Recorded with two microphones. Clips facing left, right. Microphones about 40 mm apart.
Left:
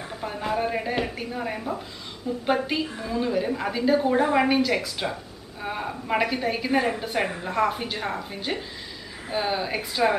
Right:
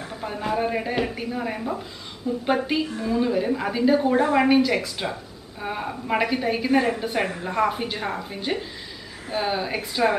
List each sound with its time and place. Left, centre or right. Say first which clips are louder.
0.0 s a woman's voice: right 1 dB; centre